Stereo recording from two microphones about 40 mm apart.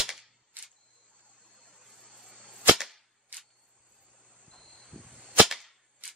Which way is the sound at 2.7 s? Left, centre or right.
Centre.